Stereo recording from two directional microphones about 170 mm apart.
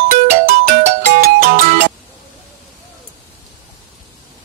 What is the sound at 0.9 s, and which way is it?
Music, 45° right (ahead or behind).